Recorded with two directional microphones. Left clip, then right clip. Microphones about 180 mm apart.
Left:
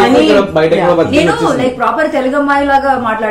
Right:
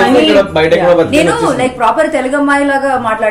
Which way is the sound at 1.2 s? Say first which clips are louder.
Even; 30° right (ahead or behind).